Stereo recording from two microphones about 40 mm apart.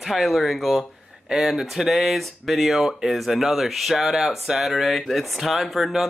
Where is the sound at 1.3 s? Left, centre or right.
Centre.